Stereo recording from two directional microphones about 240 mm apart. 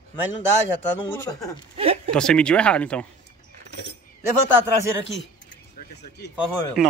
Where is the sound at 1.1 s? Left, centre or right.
Centre.